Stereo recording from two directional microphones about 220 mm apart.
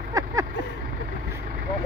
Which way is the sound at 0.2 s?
15° right (ahead or behind).